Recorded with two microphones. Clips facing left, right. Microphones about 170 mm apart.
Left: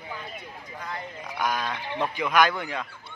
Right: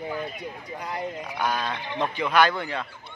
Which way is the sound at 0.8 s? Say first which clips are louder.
Right 5 dB; 15° right (ahead or behind).